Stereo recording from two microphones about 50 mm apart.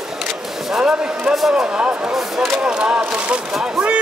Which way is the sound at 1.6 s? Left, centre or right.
Centre.